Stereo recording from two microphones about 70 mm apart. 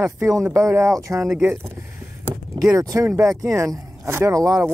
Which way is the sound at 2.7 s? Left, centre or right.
Right.